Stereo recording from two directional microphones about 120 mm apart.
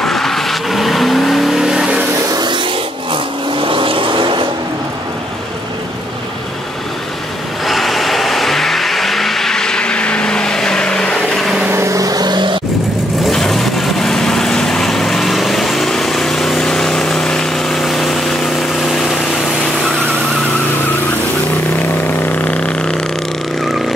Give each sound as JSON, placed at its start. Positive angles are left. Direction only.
{"t": 0.0, "sound": "vehicle", "side_deg": 5}
{"t": 2.3, "sound": "vehicle", "side_deg": -40}
{"t": 7.6, "sound": "vehicle", "side_deg": 0}
{"t": 11.6, "sound": "vehicle", "side_deg": -20}
{"t": 13.3, "sound": "vehicle", "side_deg": 0}
{"t": 22.4, "sound": "vehicle", "side_deg": 10}